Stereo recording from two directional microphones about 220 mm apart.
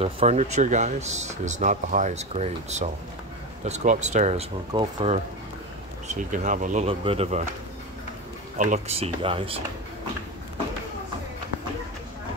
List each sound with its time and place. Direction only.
0.0 s speech: 30° right (ahead or behind)
8.5 s speech: 35° right (ahead or behind)